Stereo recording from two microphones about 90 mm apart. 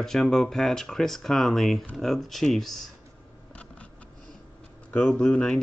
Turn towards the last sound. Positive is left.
turn(degrees=10)  # may be behind; listen again after turning